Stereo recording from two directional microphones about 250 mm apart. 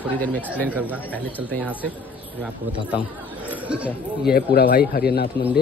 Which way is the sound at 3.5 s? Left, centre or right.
Centre.